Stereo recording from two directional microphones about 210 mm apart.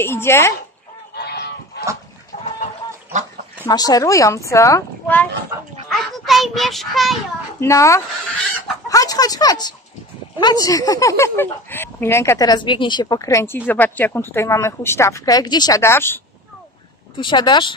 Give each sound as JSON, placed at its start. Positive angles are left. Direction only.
{"t": 0.0, "sound": "speech", "side_deg": 10}
{"t": 1.1, "sound": "goose", "side_deg": 50}
{"t": 2.3, "sound": "chicken", "side_deg": 35}
{"t": 3.6, "sound": "speech", "side_deg": 15}
{"t": 5.9, "sound": "child singing", "side_deg": 0}
{"t": 7.6, "sound": "speech", "side_deg": 15}
{"t": 17.2, "sound": "speech", "side_deg": 20}